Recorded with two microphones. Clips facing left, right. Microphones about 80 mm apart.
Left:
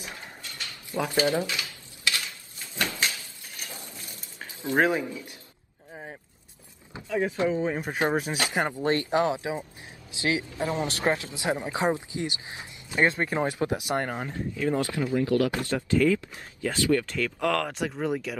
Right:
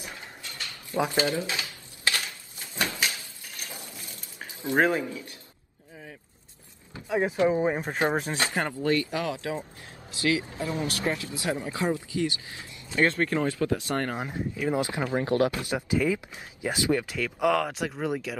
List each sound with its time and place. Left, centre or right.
0.9 s speech: centre
1.4 s a sound: right
4.7 s speech: centre
7.1 s speech: right
8.1 s speech: centre
8.5 s speech: centre
14.1 s speech: centre; by 15.5 s right
15.6 s speech: centre